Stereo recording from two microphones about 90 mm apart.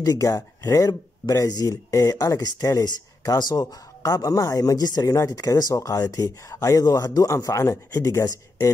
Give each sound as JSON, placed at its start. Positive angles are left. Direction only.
{"t": 0.0, "sound": "speech", "side_deg": 45}
{"t": 3.3, "sound": "speech", "side_deg": 55}
{"t": 4.0, "sound": "speech", "side_deg": 40}